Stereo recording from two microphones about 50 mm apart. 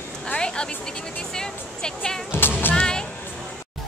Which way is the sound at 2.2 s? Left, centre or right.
Left.